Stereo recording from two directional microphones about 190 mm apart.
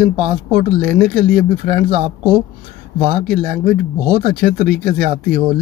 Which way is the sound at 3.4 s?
45° right (ahead or behind).